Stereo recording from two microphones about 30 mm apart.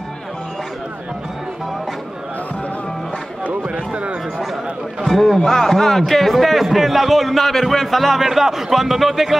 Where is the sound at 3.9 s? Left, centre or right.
Right.